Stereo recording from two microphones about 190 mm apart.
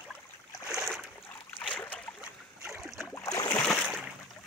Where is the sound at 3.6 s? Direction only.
Centre (ahead or behind).